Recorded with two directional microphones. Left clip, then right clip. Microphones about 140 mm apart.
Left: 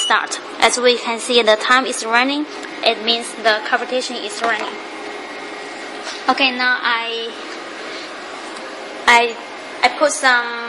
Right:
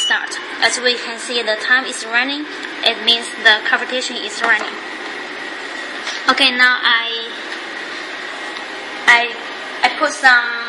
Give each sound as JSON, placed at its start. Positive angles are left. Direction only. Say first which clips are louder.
{"t": 0.1, "sound": "a woman's voice", "louder": "left 1 dB", "side_deg": 55}
{"t": 2.8, "sound": "a woman's voice", "louder": "right 2 dB", "side_deg": 25}
{"t": 3.7, "sound": "a woman's voice", "louder": "right 1 dB", "side_deg": 15}
{"t": 6.2, "sound": "a woman's voice", "louder": "right 3 dB", "side_deg": 15}
{"t": 9.0, "sound": "a woman's voice", "louder": "even", "side_deg": 80}
{"t": 9.8, "sound": "a woman's voice", "louder": "left 1 dB", "side_deg": 45}